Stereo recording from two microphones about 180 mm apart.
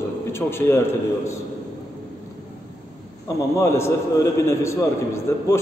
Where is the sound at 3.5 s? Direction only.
15° left (ahead or behind).